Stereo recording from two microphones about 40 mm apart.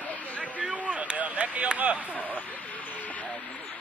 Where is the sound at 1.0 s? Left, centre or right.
Right.